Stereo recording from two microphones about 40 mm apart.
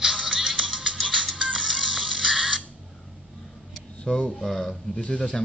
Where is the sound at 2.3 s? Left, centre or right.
Centre.